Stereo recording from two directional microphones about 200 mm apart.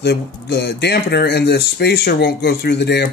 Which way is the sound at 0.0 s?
55° left (ahead or behind).